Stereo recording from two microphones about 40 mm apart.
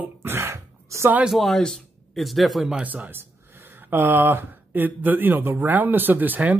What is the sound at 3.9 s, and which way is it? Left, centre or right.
Speech, right.